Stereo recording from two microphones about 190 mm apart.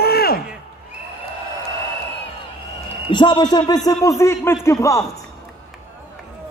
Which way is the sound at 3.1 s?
25° left (ahead or behind).